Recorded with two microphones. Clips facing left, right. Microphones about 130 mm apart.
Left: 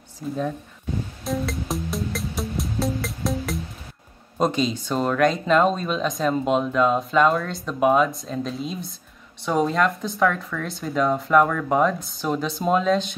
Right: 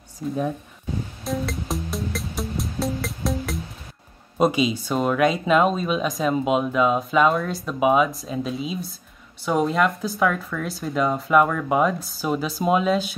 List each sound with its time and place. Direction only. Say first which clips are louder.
0.2 s speech: right 2 dB; centre (ahead or behind)
1.2 s music: left 1 dB; centre (ahead or behind)
4.4 s speech: right 2 dB; 10° right (ahead or behind)